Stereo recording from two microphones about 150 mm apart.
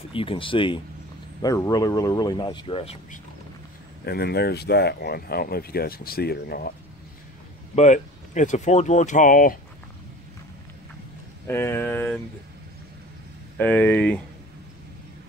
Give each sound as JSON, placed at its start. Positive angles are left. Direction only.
{"t": 0.1, "sound": "speech", "side_deg": 35}
{"t": 1.4, "sound": "speech", "side_deg": 25}
{"t": 4.0, "sound": "speech", "side_deg": 90}
{"t": 7.7, "sound": "speech", "side_deg": 50}
{"t": 11.4, "sound": "speech", "side_deg": 15}
{"t": 13.6, "sound": "speech", "side_deg": 10}